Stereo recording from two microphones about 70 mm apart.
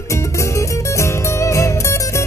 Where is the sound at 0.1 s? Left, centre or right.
Left.